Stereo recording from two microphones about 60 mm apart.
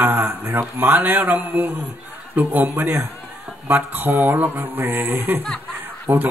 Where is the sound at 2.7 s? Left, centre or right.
Right.